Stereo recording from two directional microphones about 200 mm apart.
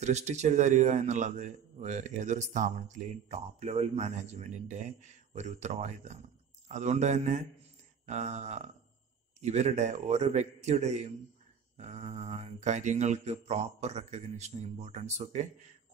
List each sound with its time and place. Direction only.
0.0 s a man's voice: 35° right (ahead or behind)